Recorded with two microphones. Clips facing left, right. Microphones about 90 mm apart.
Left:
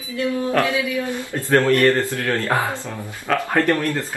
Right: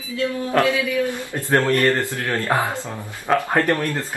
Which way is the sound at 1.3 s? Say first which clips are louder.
Left 2 dB; 20° right (ahead or behind).